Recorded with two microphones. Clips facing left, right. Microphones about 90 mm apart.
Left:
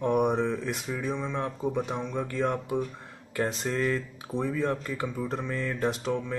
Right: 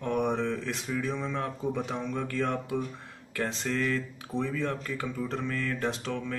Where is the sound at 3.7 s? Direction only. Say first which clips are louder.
Left 1 dB; 25° left (ahead or behind).